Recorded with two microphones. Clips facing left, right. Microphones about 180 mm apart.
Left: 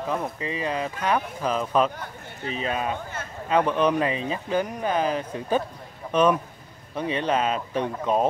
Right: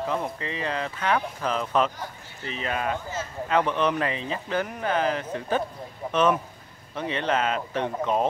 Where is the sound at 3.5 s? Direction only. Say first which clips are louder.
Left 3 dB; 10° left (ahead or behind).